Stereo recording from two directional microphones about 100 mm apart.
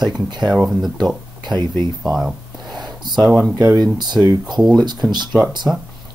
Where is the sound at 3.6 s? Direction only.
40° right (ahead or behind).